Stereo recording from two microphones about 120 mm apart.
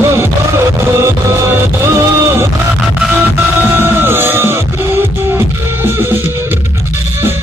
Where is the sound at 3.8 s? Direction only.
20° right (ahead or behind).